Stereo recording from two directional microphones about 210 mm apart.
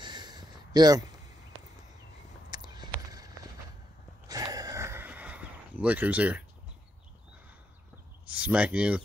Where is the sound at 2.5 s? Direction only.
20° right (ahead or behind).